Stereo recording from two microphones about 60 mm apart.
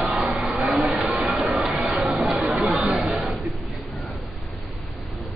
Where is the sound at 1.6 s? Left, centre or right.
Centre.